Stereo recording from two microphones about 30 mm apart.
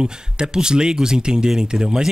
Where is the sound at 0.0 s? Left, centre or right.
Right.